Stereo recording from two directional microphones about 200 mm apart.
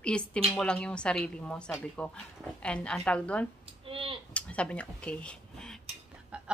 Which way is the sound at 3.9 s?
25° right (ahead or behind).